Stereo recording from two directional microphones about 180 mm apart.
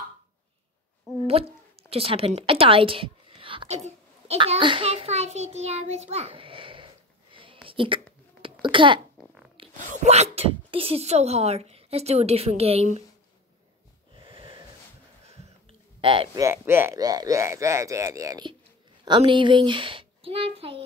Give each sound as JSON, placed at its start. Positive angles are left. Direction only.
{"t": 1.9, "sound": "a woman's voice", "side_deg": -30}
{"t": 7.6, "sound": "a sound", "side_deg": -30}
{"t": 9.8, "sound": "speech", "side_deg": -40}
{"t": 14.1, "sound": "a sound", "side_deg": -30}
{"t": 16.0, "sound": "a child's voice", "side_deg": -30}
{"t": 16.4, "sound": "a child's voice", "side_deg": -15}